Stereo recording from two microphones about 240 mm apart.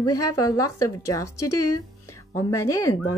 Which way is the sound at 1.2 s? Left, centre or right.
Left.